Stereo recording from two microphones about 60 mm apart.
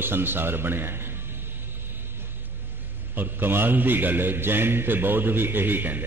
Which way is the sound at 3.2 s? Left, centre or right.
Right.